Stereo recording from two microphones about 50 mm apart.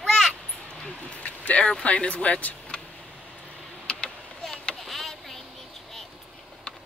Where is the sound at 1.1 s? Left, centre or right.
Left.